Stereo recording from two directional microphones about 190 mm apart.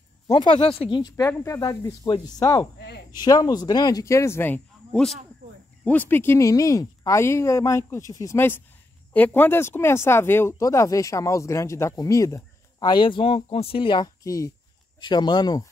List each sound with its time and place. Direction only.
0.3 s speech: 25° left (ahead or behind)